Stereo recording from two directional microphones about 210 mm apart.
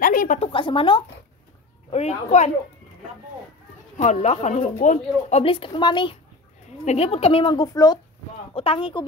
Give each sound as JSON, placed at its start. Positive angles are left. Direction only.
{"t": 0.0, "sound": "a woman's voice", "side_deg": 40}
{"t": 0.5, "sound": "a woman's voice", "side_deg": 25}
{"t": 3.9, "sound": "a woman's voice", "side_deg": 35}